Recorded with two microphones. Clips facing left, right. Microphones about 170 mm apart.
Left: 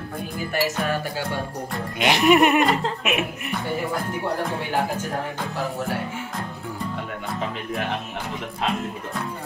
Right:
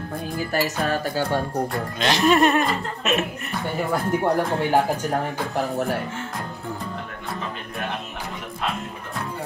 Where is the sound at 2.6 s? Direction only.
85° left.